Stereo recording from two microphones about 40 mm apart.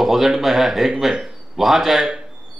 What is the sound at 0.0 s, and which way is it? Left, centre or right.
Speech, centre.